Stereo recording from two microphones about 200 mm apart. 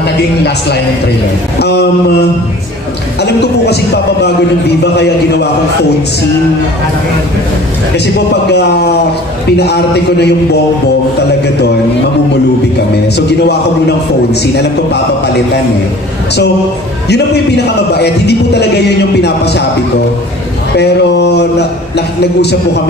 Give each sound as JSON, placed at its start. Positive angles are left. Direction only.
{"t": 1.6, "sound": "speech", "side_deg": 55}
{"t": 4.9, "sound": "speech", "side_deg": 55}
{"t": 8.5, "sound": "speech", "side_deg": 55}
{"t": 17.9, "sound": "speech", "side_deg": 55}
{"t": 20.7, "sound": "speech", "side_deg": 55}